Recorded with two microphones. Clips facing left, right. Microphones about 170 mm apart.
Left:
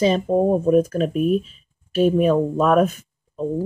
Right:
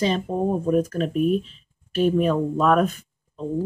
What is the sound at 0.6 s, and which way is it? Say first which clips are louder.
Speech: left 4 dB; 25° left (ahead or behind).